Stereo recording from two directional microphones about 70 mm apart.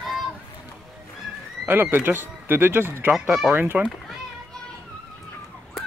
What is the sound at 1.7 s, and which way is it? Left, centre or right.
Speech, right.